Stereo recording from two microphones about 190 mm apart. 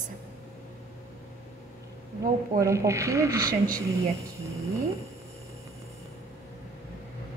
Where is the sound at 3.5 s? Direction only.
50° right (ahead or behind).